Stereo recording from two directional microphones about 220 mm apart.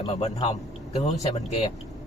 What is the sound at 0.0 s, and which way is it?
Speech, 25° left (ahead or behind).